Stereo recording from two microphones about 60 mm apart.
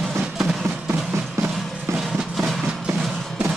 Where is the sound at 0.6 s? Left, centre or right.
Right.